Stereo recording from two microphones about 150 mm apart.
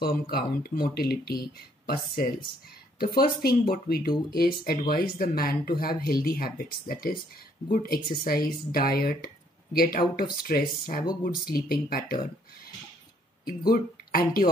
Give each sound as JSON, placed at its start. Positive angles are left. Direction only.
{"t": 0.0, "sound": "speech", "side_deg": 90}
{"t": 3.4, "sound": "speech", "side_deg": 75}
{"t": 10.5, "sound": "speech", "side_deg": 80}
{"t": 11.2, "sound": "speech", "side_deg": 90}
{"t": 13.5, "sound": "speech", "side_deg": 80}